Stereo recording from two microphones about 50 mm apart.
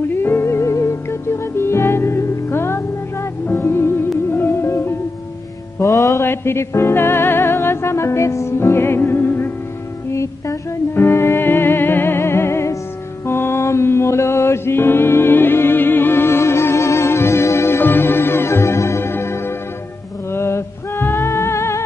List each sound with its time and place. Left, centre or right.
0.2 s music: left
5.8 s music: left
6.2 s music: left
11.0 s music: left
20.3 s music: left